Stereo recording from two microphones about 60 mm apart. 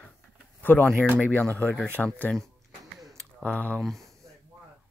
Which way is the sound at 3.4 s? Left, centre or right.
Left.